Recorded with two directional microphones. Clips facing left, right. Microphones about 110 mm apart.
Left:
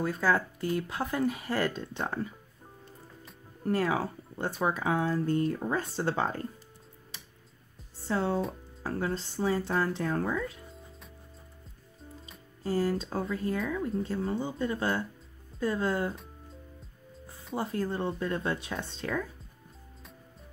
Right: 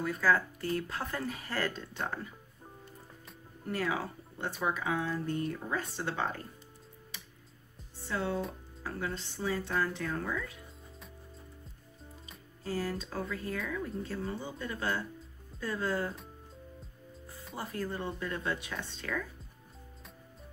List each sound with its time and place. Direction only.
0.0 s speech: 25° left (ahead or behind)
3.6 s speech: 40° left (ahead or behind)
8.1 s speech: 35° left (ahead or behind)
12.6 s speech: 30° left (ahead or behind)
17.6 s speech: 25° left (ahead or behind)